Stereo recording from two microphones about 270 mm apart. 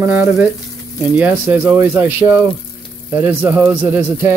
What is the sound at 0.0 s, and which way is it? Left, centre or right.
Speech, centre.